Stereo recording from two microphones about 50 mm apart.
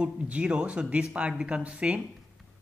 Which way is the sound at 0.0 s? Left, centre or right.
Right.